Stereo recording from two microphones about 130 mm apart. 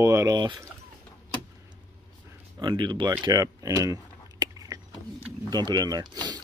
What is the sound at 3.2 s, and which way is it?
Biting, 30° right (ahead or behind).